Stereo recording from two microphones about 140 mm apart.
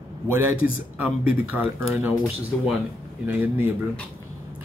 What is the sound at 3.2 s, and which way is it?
Speech, 15° right (ahead or behind).